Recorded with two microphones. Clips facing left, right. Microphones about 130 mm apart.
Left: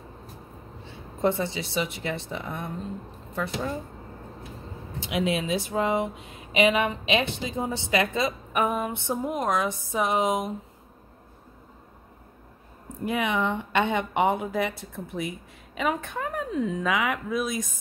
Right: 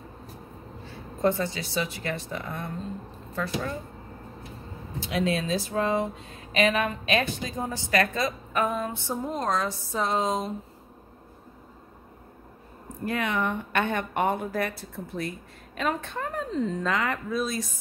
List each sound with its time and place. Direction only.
0.8 s speech: 20° left (ahead or behind)
3.3 s a sound: 20° left (ahead or behind)
5.0 s speech: 20° left (ahead or behind)
13.0 s speech: 20° left (ahead or behind)